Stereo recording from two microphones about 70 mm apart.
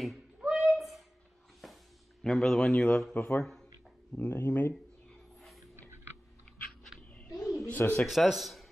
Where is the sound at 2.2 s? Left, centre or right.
Centre.